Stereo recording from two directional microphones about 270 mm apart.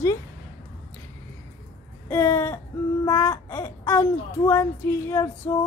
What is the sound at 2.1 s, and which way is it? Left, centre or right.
Speech, centre.